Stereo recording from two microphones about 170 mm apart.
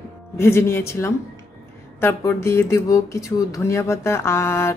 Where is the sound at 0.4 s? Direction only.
15° left (ahead or behind).